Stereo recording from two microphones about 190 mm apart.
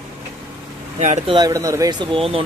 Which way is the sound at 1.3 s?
20° right (ahead or behind).